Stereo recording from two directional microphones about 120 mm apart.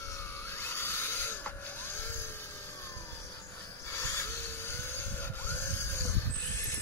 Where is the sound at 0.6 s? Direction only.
20° left (ahead or behind).